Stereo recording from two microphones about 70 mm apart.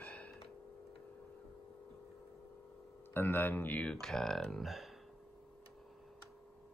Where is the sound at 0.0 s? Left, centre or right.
Left.